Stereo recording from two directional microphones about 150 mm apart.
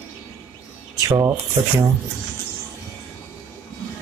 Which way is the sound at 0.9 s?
20° right (ahead or behind).